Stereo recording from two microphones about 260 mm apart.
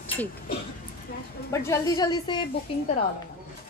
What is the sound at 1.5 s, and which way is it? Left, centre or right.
A woman's voice, centre.